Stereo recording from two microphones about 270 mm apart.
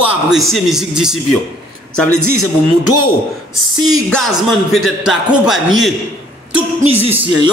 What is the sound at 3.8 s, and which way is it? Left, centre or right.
A man's voice, centre.